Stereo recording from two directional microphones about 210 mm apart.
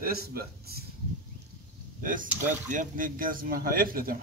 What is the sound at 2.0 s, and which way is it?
A man's voice, 40° right (ahead or behind).